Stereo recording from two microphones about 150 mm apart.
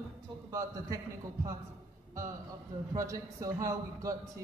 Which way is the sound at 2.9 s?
20° right (ahead or behind).